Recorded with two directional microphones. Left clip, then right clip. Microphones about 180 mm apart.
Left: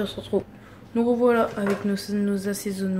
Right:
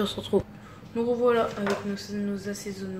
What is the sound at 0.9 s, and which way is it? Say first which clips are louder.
Speech: left 3 dB; 25° left (ahead or behind).